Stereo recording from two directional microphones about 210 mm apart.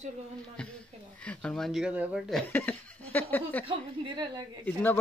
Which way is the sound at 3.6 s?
20° right (ahead or behind).